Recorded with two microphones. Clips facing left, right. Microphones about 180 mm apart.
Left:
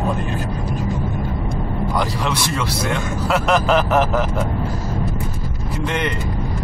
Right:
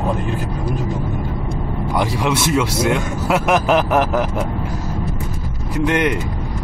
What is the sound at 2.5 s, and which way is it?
Speech, 10° right (ahead or behind).